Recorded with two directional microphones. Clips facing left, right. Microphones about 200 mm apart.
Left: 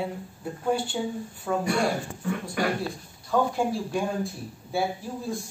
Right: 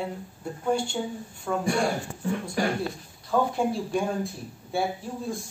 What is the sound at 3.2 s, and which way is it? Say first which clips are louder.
Speech: even; centre (ahead or behind).